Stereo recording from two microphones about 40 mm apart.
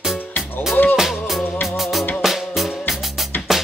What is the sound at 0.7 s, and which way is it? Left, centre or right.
Music, left.